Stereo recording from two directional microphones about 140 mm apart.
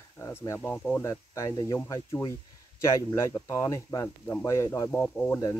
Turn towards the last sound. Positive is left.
turn(degrees=10)  # may be behind; listen again after turning